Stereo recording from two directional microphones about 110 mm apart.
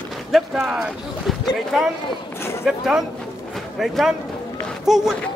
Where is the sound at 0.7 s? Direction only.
5° right (ahead or behind).